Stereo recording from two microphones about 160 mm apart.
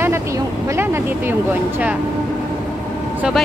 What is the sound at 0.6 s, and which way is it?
Speech, 15° right (ahead or behind).